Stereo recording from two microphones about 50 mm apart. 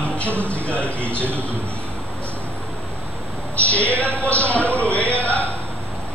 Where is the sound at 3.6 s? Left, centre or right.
Left.